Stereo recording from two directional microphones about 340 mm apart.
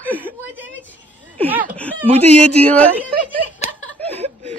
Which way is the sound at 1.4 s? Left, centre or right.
Centre.